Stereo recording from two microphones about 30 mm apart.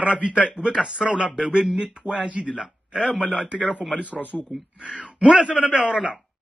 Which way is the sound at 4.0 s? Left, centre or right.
Left.